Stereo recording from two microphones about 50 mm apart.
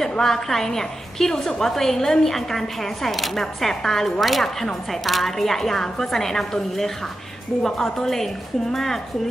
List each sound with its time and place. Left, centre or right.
0.0 s a woman's voice: centre